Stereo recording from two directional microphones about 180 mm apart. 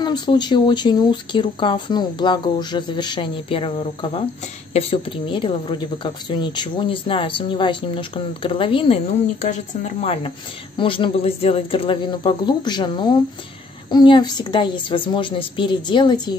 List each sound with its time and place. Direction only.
0.0 s speech: 25° left (ahead or behind)